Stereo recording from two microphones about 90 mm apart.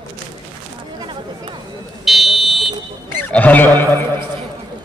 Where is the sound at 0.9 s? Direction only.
65° right (ahead or behind).